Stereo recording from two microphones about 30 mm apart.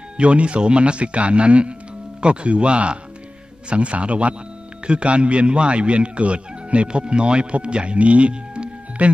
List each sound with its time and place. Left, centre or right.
0.2 s a man's voice: right
9.0 s a man's voice: right